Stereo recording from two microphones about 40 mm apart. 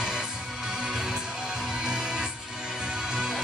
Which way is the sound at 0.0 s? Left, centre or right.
Centre.